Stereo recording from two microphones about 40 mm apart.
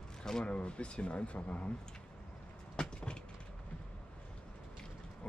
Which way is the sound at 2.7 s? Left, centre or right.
Left.